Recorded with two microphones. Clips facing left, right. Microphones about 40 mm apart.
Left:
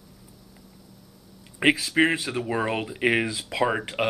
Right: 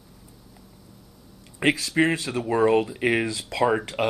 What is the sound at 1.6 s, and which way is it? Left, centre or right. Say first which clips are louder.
Speech: left 1 dB; centre.